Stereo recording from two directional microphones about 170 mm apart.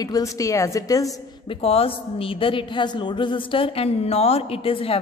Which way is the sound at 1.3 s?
30° left (ahead or behind).